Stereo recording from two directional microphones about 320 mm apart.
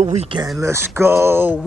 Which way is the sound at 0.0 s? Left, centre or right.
Centre.